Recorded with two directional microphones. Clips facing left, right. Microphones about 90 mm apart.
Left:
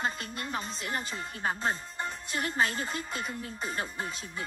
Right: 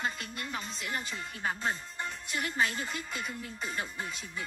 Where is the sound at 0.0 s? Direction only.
35° left (ahead or behind).